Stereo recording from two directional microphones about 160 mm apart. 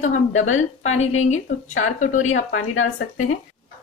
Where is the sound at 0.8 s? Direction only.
45° left (ahead or behind).